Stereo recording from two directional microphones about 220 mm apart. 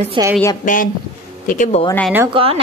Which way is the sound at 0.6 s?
40° left (ahead or behind).